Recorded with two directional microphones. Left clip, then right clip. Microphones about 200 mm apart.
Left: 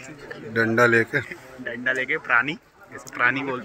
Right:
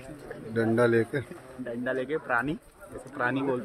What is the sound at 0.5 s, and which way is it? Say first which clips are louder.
Speech: left 6 dB; centre (ahead or behind).